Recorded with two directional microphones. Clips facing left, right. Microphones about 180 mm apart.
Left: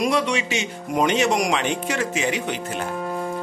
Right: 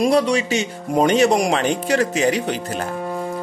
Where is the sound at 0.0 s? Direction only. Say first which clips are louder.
Right 5 dB; 35° right (ahead or behind).